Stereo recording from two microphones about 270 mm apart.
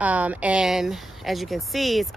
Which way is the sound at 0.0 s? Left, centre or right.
Centre.